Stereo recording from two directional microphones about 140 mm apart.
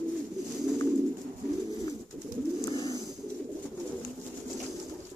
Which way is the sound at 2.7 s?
30° left (ahead or behind).